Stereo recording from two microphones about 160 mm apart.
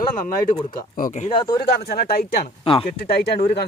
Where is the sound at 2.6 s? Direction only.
35° left (ahead or behind).